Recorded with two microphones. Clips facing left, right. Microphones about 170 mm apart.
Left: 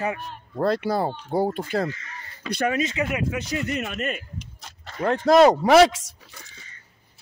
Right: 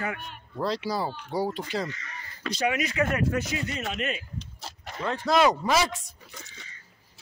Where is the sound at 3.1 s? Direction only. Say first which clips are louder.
Even; 10° left (ahead or behind).